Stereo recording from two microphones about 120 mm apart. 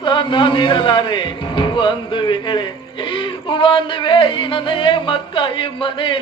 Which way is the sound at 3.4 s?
45° left (ahead or behind).